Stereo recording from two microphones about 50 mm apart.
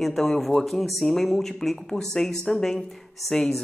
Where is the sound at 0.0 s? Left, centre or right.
Centre.